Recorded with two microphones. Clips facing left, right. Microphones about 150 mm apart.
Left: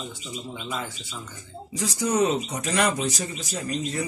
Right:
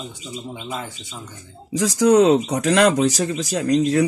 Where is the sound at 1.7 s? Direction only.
90° right.